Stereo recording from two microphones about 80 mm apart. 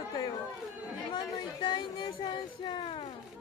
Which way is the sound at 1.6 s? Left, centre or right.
Left.